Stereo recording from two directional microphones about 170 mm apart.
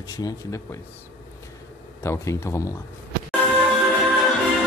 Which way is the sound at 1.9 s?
15° left (ahead or behind).